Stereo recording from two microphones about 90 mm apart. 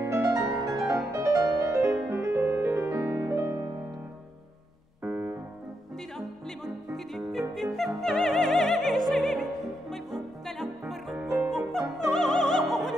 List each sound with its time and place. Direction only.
0.0 s music: 30° right (ahead or behind)
5.0 s piano: 20° right (ahead or behind)
6.1 s music: centre (ahead or behind)
11.5 s opera: centre (ahead or behind)